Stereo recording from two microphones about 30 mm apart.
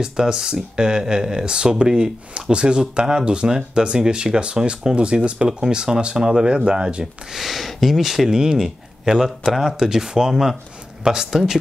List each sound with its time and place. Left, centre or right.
0.0 s speech: right
5.5 s speech: right
7.3 s speech: centre
8.3 s speech: right
9.2 s speech: centre
9.9 s speech: right